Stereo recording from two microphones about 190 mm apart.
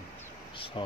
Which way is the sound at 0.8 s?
25° left (ahead or behind).